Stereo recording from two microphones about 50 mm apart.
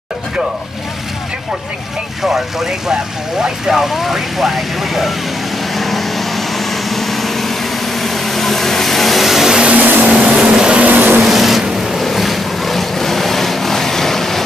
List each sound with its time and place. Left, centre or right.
3.4 s speech: centre
5.8 s vehicle: centre
9.6 s vehicle: right
10.9 s vehicle: right
11.2 s vehicle: centre